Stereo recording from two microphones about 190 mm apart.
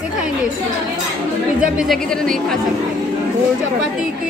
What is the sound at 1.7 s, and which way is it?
Speech, centre (ahead or behind).